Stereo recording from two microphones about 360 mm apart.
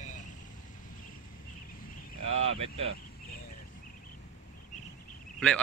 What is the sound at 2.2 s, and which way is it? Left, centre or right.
Speech, right.